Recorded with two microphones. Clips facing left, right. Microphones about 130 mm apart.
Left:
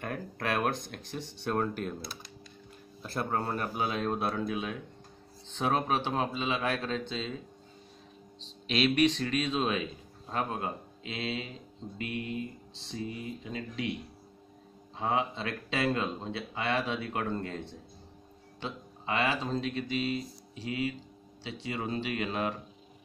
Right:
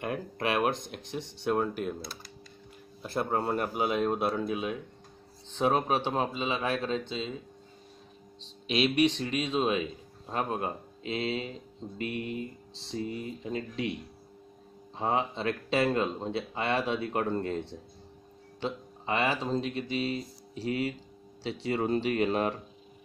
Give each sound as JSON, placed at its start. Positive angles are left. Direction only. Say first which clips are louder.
{"t": 0.0, "sound": "speech", "louder": "right 3 dB", "side_deg": -15}
{"t": 3.0, "sound": "speech", "louder": "right 3 dB", "side_deg": -20}
{"t": 5.6, "sound": "speech", "louder": "right 3 dB", "side_deg": -20}
{"t": 5.9, "sound": "speech", "louder": "right 2 dB", "side_deg": -30}
{"t": 8.6, "sound": "speech", "louder": "right 1 dB", "side_deg": -20}
{"t": 15.0, "sound": "speech", "louder": "right 1 dB", "side_deg": -30}
{"t": 18.6, "sound": "a sound", "louder": "right 5 dB", "side_deg": -30}
{"t": 19.4, "sound": "speech", "louder": "right 2 dB", "side_deg": -20}
{"t": 20.6, "sound": "speech", "louder": "right 2 dB", "side_deg": -40}